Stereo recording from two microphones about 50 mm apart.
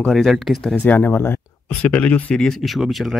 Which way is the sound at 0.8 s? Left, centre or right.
Left.